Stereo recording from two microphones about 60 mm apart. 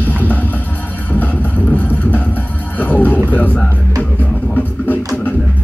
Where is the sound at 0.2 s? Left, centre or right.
Left.